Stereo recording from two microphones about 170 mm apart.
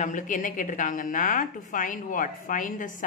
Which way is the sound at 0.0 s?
50° left (ahead or behind).